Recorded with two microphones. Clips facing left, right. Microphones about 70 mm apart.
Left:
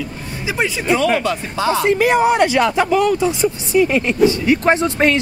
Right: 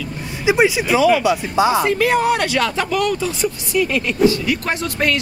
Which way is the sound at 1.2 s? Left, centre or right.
Centre.